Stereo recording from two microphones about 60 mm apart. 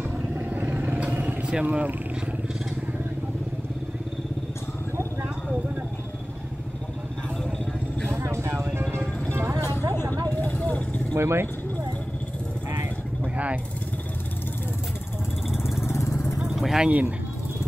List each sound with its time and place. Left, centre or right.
0.4 s vehicle: right
8.1 s vehicle: right
9.5 s a sound: right
10.0 s vehicle: right
10.3 s vehicle: left
11.1 s speech: right
13.2 s mechanisms: right
15.5 s vehicle: centre
15.8 s vehicle: left
16.5 s vehicle: centre
16.8 s speech: right